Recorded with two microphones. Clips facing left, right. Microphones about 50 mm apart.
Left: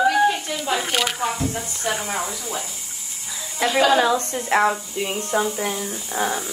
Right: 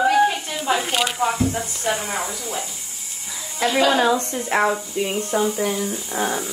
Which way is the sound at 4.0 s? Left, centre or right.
Right.